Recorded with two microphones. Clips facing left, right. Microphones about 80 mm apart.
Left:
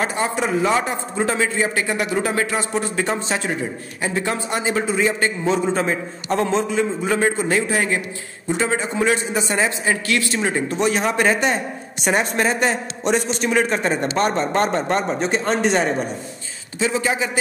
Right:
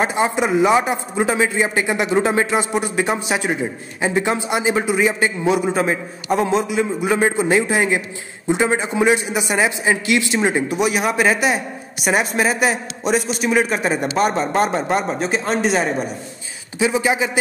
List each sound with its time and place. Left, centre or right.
0.0 s a man's voice: centre
16.7 s a man's voice: centre